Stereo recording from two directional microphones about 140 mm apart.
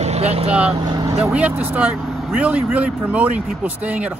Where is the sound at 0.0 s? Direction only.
50° right (ahead or behind).